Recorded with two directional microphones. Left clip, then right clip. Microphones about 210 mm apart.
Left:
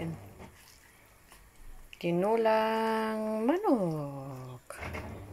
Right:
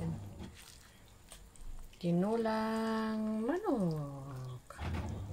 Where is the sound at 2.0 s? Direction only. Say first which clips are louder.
Left 7 dB; 30° left (ahead or behind).